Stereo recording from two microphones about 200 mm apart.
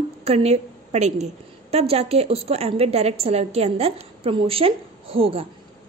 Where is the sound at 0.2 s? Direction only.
30° right (ahead or behind).